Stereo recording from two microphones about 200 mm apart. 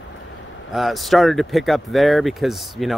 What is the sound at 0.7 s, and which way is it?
Speech, centre (ahead or behind).